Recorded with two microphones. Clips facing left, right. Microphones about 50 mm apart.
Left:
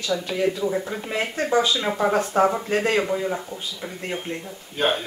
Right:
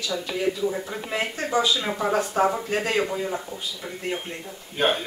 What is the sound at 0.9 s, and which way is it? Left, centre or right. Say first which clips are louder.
Speech: left 1 dB; centre.